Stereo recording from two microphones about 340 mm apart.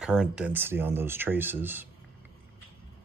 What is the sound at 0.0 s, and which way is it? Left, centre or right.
Speech, centre.